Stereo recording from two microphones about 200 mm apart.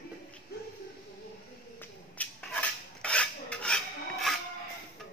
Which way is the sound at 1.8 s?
5° left (ahead or behind).